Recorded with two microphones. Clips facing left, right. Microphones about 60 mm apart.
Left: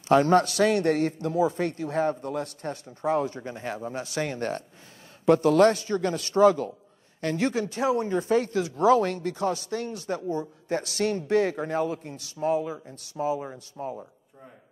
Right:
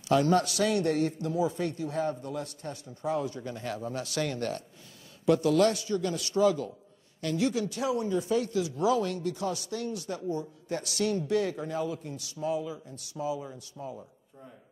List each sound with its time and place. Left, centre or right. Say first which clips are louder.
0.1 s a man's voice: left 5 dB; left